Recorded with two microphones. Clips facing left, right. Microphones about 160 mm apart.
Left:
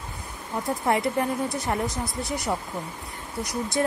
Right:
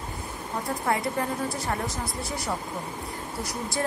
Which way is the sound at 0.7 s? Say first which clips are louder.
Left 3 dB; 20° left (ahead or behind).